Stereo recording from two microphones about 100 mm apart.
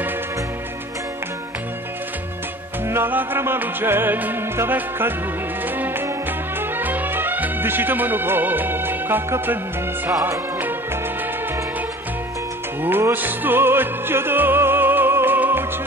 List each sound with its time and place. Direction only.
2.9 s music: 20° right (ahead or behind)
12.8 s music: 20° right (ahead or behind)